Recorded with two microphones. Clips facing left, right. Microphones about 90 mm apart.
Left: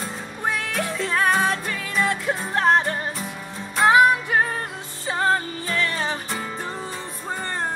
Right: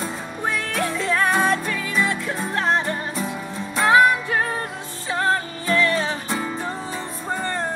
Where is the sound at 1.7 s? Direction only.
20° left (ahead or behind).